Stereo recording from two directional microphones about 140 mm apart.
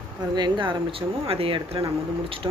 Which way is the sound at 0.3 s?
35° right (ahead or behind).